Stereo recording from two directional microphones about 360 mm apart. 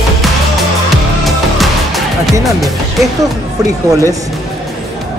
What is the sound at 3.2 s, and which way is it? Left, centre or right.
Speech, centre.